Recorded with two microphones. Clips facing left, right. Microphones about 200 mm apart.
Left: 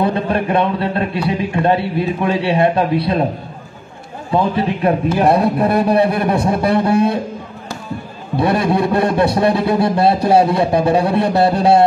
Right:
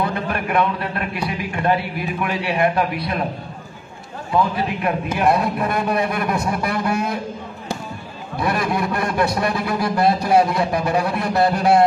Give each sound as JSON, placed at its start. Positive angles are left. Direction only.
{"t": 0.0, "sound": "a man's voice", "side_deg": 30}
{"t": 4.3, "sound": "a man's voice", "side_deg": 30}
{"t": 8.4, "sound": "a man's voice", "side_deg": 30}